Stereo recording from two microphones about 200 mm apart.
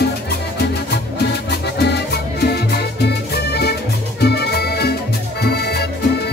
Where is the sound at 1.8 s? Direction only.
55° left (ahead or behind).